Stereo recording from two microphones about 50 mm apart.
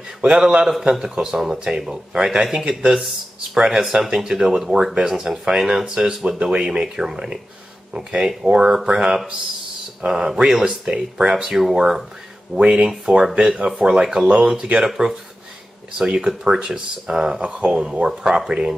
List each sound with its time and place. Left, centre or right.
0.2 s speech: centre
3.8 s speech: centre
14.2 s speech: right
14.8 s speech: centre